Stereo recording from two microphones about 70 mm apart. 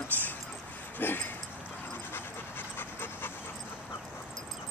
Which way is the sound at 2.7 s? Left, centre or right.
Left.